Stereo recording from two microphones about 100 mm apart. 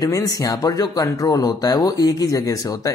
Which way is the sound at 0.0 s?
40° left (ahead or behind).